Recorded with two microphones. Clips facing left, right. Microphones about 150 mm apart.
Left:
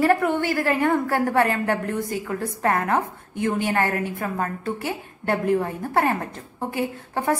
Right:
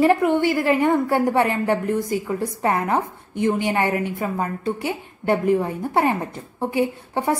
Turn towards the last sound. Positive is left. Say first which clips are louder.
# right 1 dB
turn(degrees=-15)  # may be behind; listen again after turning